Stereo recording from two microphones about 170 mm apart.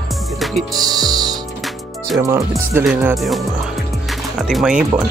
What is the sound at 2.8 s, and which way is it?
Speech, 5° right (ahead or behind).